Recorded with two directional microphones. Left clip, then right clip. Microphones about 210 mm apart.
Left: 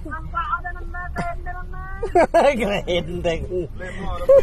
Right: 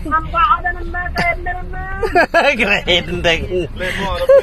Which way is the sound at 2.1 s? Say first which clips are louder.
Right 3 dB; 5° left (ahead or behind).